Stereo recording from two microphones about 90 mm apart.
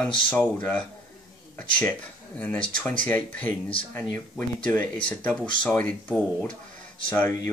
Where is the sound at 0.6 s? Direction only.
10° left (ahead or behind).